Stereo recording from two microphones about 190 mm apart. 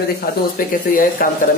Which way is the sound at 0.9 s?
45° left (ahead or behind).